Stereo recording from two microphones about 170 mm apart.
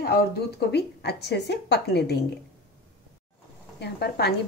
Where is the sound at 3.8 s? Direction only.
75° left (ahead or behind).